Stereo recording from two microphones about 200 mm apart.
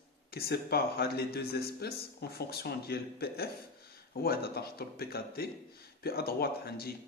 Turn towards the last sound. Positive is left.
turn(degrees=50)  # may be behind; listen again after turning